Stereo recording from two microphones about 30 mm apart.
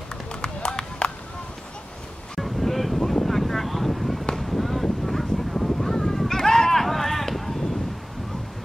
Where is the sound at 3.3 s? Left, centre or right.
Centre.